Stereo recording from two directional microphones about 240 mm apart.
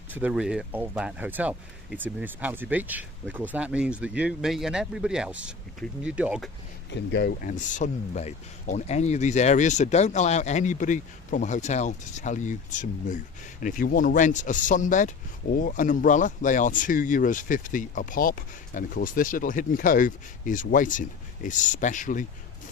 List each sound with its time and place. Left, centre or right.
0.1 s speech: centre
6.9 s speech: left